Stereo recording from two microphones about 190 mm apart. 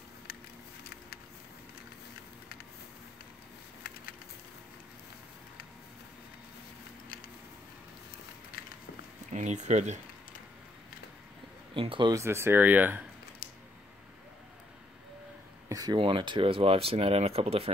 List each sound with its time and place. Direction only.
9.3 s speech: 40° right (ahead or behind)
11.7 s speech: 25° right (ahead or behind); by 13.0 s 10° right (ahead or behind)
15.7 s speech: 20° right (ahead or behind)